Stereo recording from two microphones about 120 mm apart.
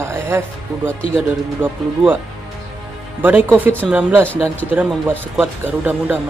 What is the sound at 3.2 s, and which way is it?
Speech, 15° right (ahead or behind).